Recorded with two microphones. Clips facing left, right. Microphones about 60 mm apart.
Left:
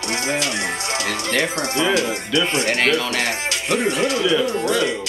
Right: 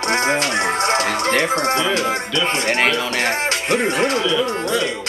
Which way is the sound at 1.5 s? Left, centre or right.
Right.